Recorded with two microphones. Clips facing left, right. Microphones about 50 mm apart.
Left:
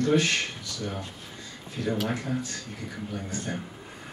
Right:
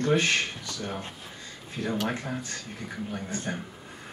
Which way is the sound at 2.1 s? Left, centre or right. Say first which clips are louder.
Left 2 dB; right.